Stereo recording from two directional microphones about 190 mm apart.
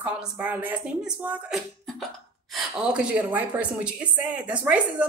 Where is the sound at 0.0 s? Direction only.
10° right (ahead or behind).